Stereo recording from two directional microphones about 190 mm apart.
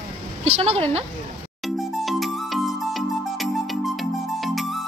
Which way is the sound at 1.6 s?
Centre (ahead or behind).